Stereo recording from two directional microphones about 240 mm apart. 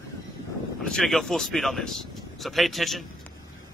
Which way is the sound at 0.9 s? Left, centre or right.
Centre.